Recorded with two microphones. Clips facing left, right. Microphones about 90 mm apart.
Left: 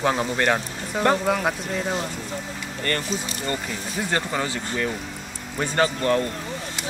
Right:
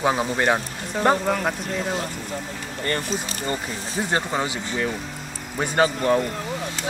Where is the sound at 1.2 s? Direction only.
5° left (ahead or behind).